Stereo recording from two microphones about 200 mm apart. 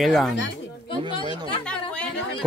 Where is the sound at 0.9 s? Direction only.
25° left (ahead or behind).